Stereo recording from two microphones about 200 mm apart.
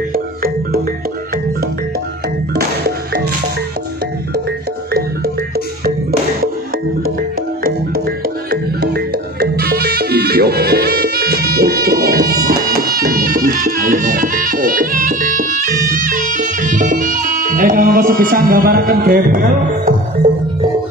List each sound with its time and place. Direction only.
0.1 s music: 45° right (ahead or behind)
8.5 s music: 50° right (ahead or behind)